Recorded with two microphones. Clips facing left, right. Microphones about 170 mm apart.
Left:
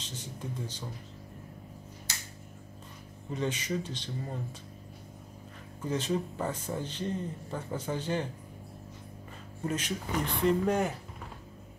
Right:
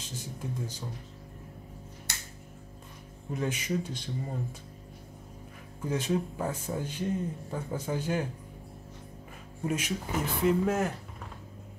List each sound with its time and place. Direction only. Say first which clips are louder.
0.0 s speech: right 2 dB; 10° right (ahead or behind)
3.3 s speech: right 1 dB; 10° right (ahead or behind)
5.8 s speech: right 1 dB; 10° right (ahead or behind)
9.7 s speech: right 1 dB; 10° right (ahead or behind)